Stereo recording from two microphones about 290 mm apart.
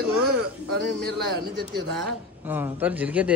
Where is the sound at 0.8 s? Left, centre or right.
Right.